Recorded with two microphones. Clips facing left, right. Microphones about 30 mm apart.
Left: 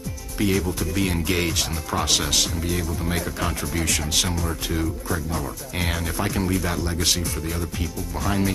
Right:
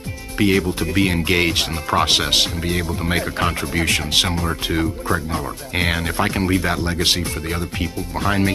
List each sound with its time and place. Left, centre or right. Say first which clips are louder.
0.4 s speech: right 5 dB; right